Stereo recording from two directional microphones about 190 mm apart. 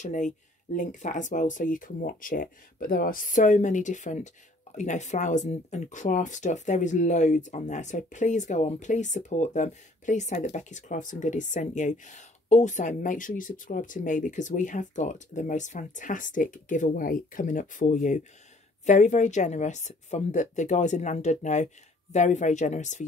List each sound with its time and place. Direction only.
0.0 s speech: 40° left (ahead or behind)